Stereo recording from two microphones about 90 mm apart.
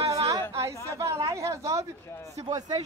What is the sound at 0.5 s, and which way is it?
Chatter, 35° right (ahead or behind).